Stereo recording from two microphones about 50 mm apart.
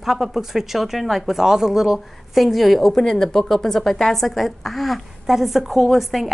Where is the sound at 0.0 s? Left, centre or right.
Centre.